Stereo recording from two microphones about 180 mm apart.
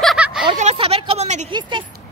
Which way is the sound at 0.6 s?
35° right (ahead or behind).